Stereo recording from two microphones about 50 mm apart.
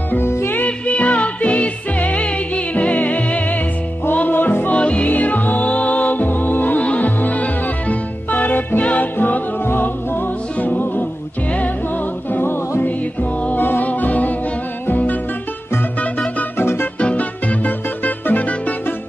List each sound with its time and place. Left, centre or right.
0.7 s music: left
4.7 s music: left
5.0 s music: left
6.8 s music: left
12.3 s music: left
12.8 s music: left
16.5 s music: left
17.0 s music: left